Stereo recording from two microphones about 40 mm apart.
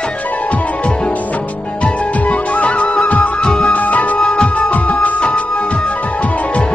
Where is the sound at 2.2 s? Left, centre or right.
Left.